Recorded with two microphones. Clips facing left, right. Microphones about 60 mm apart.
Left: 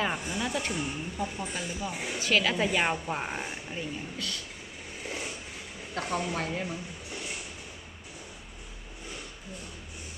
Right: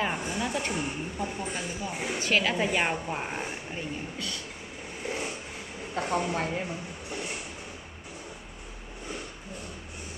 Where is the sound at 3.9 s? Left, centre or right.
Right.